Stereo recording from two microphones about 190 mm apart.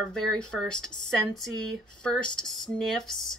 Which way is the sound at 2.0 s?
5° left (ahead or behind).